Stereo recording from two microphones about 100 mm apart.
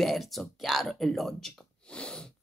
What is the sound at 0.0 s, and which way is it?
Speech, centre (ahead or behind).